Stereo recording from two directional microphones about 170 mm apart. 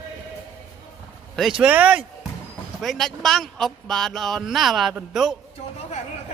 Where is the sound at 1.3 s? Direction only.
5° right (ahead or behind).